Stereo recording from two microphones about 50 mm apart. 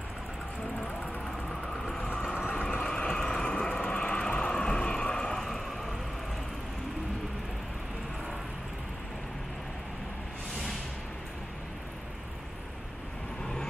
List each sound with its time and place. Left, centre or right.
0.7 s vehicle: left
2.0 s vehicle: left
2.8 s vehicle: centre